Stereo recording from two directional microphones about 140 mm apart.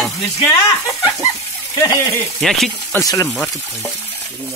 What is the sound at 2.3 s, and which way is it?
Speech, centre (ahead or behind).